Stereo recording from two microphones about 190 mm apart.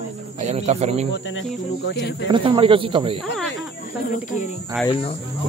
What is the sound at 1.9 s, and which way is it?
Speech, 65° left (ahead or behind).